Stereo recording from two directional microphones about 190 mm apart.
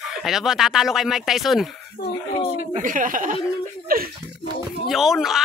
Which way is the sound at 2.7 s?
45° right (ahead or behind).